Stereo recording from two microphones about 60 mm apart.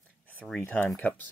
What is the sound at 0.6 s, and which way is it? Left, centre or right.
Speech, left.